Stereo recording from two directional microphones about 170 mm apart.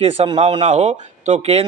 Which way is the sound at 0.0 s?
35° right (ahead or behind).